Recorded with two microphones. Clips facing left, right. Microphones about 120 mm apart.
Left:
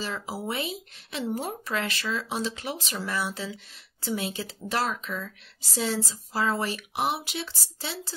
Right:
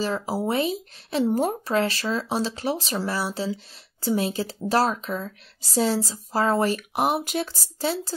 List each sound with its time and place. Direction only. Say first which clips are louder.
0.0 s speech: right 7 dB; 40° right (ahead or behind)